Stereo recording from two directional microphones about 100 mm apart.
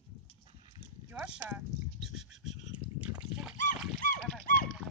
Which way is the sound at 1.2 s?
10° right (ahead or behind).